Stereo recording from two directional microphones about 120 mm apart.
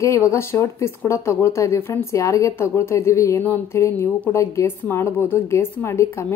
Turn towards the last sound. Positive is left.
turn(degrees=20)  # may be behind; listen again after turning